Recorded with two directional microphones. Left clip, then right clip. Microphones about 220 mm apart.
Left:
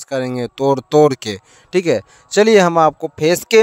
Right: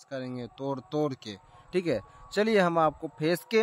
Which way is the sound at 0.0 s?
50° left (ahead or behind).